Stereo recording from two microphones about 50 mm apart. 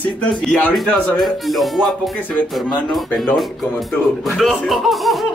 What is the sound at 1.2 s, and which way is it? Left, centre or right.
Speech, centre.